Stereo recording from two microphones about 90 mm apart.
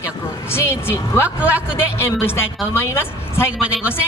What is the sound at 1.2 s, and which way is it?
Speech, 15° right (ahead or behind).